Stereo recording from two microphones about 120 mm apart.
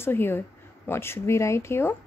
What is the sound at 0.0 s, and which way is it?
A woman's voice, 20° left (ahead or behind).